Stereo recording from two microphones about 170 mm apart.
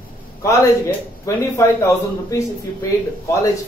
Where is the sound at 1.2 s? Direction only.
15° left (ahead or behind).